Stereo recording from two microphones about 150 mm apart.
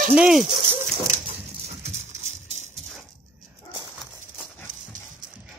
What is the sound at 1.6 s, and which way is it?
Dog, 50° right (ahead or behind).